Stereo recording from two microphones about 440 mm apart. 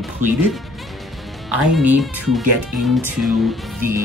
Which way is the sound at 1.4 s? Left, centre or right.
Centre.